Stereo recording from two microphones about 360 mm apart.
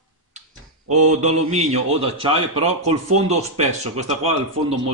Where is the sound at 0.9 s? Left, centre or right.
Centre.